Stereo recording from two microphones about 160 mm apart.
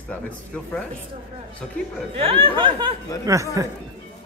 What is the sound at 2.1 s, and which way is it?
Speech, 35° right (ahead or behind).